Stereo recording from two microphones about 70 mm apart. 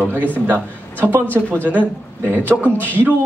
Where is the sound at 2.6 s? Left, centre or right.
Left.